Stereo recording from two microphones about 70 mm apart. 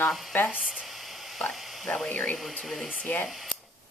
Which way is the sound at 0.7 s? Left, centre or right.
Centre.